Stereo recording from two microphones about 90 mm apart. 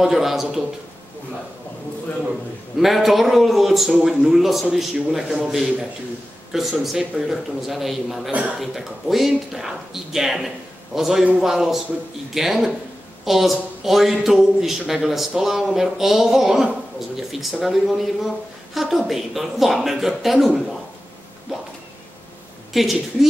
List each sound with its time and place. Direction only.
0.0 s speech: centre (ahead or behind)
2.8 s speech: centre (ahead or behind)
8.3 s a man's voice: 15° right (ahead or behind)
8.5 s speech: centre (ahead or behind)
22.7 s a woman's voice: centre (ahead or behind)